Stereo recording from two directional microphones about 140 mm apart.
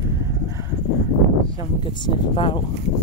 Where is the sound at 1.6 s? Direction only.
35° left (ahead or behind).